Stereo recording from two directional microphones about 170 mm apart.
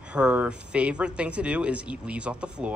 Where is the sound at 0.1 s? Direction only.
5° right (ahead or behind).